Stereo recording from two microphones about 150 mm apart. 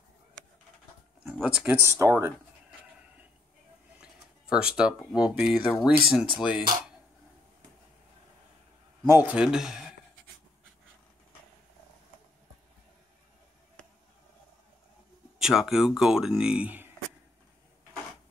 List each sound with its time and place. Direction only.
1.4 s a man's voice: 5° right (ahead or behind)
1.8 s speech: 20° right (ahead or behind)
4.0 s speech: 5° right (ahead or behind)
9.0 s a man's voice: 15° right (ahead or behind)
13.8 s basketball bounce: 5° left (ahead or behind)
15.3 s speech: 5° right (ahead or behind)